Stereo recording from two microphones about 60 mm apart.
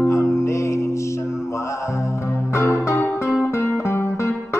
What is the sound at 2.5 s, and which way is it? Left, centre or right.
Music, left.